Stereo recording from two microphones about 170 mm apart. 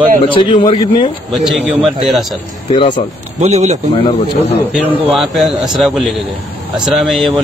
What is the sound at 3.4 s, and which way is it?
Speech, 40° right (ahead or behind).